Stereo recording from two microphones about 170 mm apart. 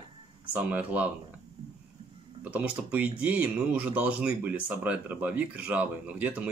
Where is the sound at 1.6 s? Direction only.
35° right (ahead or behind).